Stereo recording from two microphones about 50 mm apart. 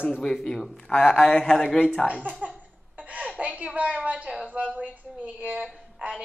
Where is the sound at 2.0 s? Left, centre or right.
Centre.